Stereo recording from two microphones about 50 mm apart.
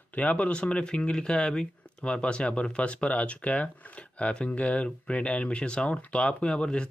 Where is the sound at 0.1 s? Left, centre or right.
Left.